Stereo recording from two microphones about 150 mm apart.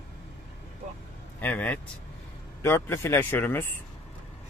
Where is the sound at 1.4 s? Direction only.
10° left (ahead or behind).